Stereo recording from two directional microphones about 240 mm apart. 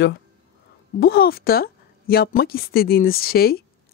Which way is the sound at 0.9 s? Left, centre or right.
Left.